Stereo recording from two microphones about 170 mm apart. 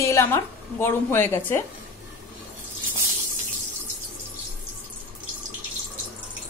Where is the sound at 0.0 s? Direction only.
15° left (ahead or behind).